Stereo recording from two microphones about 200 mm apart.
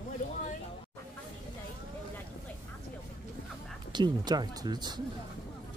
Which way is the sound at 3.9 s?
20° right (ahead or behind).